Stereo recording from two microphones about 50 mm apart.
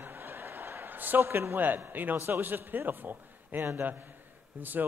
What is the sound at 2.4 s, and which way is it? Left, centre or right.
A man's voice, right.